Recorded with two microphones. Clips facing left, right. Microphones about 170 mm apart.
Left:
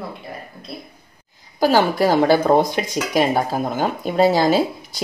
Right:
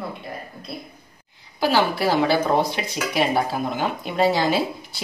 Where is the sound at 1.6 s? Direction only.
45° left (ahead or behind).